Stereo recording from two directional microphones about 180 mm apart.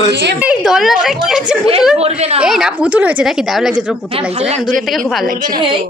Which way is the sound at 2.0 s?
35° right (ahead or behind).